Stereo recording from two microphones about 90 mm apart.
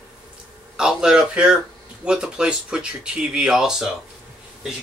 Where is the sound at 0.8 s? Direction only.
10° right (ahead or behind).